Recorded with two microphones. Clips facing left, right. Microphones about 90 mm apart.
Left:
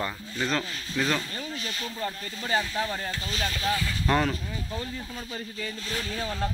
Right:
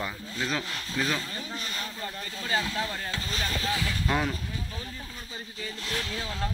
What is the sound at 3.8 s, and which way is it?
Speech, 5° right (ahead or behind).